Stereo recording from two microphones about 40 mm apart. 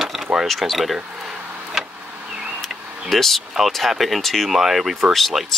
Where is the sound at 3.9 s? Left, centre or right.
Centre.